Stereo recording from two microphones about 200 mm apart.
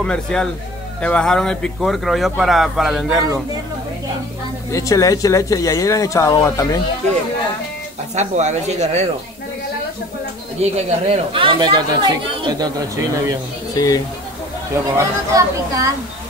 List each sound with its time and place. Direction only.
0.0 s speech: 5° left (ahead or behind)
4.6 s speech: 15° left (ahead or behind)
8.1 s speech: 35° right (ahead or behind)
10.6 s speech: 30° right (ahead or behind)
13.7 s speech: 15° left (ahead or behind)
15.0 s speech: 15° right (ahead or behind)